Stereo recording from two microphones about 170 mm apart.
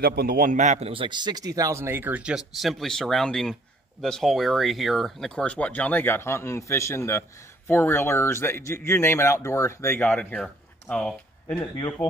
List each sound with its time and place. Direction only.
0.0 s a man's voice: 65° right (ahead or behind); by 11.7 s 5° left (ahead or behind)